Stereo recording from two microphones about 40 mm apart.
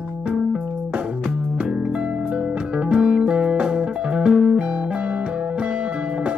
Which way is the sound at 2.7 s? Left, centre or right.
Right.